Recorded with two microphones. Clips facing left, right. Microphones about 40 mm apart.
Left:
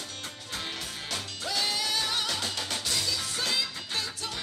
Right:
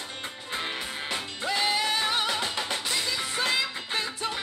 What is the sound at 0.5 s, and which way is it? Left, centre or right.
Music, right.